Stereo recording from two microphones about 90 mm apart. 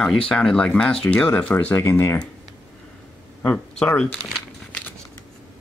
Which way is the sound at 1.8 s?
25° left (ahead or behind).